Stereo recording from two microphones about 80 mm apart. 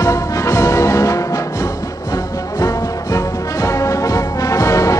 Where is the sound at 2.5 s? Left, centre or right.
Left.